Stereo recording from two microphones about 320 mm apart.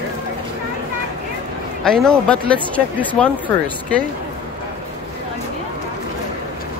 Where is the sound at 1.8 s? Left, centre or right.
Centre.